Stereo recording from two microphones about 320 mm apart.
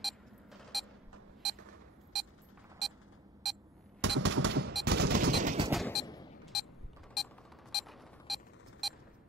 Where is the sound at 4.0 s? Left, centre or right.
Right.